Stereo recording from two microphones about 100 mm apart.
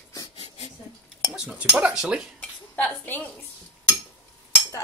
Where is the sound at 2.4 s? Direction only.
15° left (ahead or behind).